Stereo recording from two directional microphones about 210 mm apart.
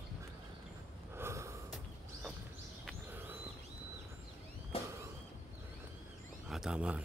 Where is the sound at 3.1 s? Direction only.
10° right (ahead or behind).